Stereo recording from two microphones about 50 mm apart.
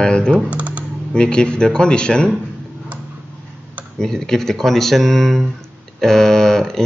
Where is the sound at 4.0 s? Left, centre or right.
Centre.